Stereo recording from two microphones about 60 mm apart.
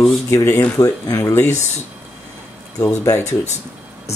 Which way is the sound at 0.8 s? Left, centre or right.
Left.